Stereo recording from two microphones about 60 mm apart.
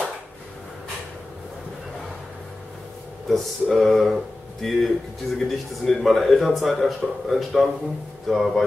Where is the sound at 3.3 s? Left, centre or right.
Centre.